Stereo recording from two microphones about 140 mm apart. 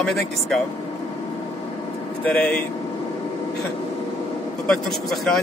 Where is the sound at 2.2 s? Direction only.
5° left (ahead or behind).